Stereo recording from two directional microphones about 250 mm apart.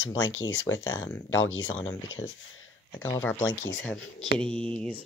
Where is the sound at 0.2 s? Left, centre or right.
Left.